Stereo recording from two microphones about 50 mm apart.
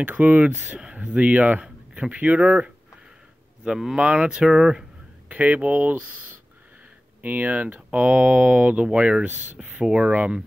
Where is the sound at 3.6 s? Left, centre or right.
Centre.